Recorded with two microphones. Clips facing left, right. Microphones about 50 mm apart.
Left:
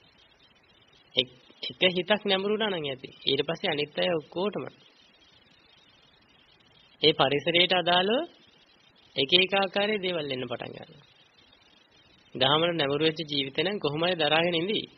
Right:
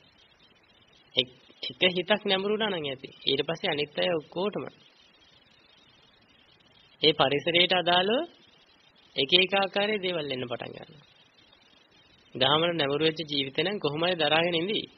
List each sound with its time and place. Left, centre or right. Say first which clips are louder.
1.1 s a man's voice: even; centre
7.0 s a man's voice: even; centre
10.8 s a man's voice: even; right
12.4 s a man's voice: even; centre